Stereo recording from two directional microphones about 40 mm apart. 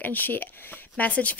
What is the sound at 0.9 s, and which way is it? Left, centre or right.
Speech, left.